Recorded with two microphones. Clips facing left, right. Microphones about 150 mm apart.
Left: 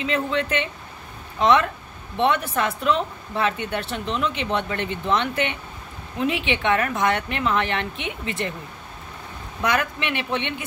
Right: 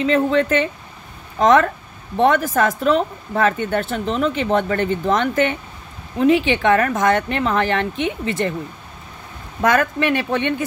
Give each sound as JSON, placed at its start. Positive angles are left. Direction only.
{"t": 0.0, "sound": "a woman's voice", "side_deg": -40}
{"t": 9.6, "sound": "a woman's voice", "side_deg": -45}